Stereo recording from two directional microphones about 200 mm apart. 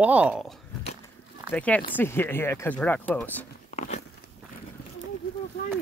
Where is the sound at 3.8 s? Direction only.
35° left (ahead or behind).